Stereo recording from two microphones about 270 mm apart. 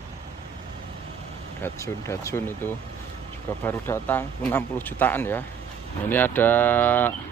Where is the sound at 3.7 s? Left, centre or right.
Centre.